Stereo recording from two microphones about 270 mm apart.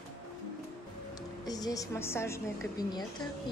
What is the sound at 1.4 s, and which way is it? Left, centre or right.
A woman's voice, centre.